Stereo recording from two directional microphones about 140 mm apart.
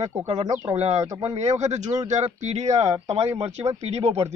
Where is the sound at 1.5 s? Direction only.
55° right (ahead or behind).